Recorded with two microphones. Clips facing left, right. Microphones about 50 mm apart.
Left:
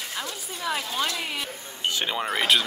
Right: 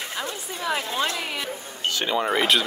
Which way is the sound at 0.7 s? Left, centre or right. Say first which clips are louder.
Right 3 dB; right.